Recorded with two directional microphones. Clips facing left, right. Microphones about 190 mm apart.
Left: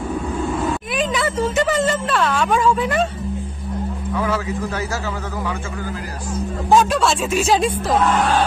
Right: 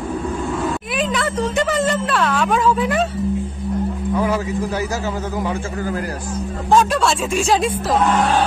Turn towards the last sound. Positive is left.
turn(degrees=0)  # may be behind; listen again after turning